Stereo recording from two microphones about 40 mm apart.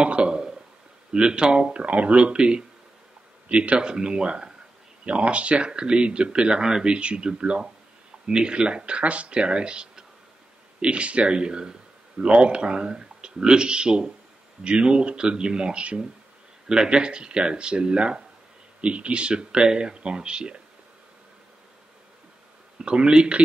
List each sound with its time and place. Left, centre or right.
0.0 s a sound: right
1.1 s speech: right
6.9 s speech: right
16.6 s speech: centre
22.8 s speech: right